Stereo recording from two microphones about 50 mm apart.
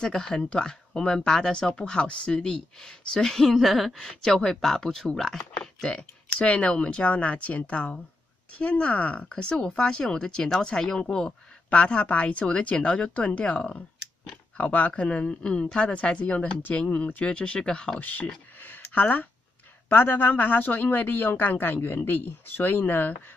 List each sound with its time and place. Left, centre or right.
0.0 s speech: centre
3.9 s speech: centre
17.9 s a man's voice: left
18.6 s a sound: left
19.9 s a man's voice: left